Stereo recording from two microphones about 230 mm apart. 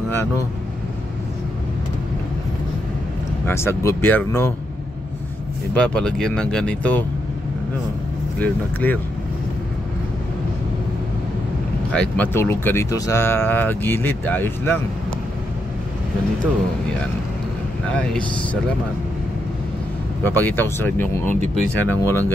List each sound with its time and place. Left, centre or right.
3.4 s speech: centre
5.8 s speech: centre
8.4 s speech: centre
11.9 s speech: centre
17.9 s speech: centre
20.2 s speech: centre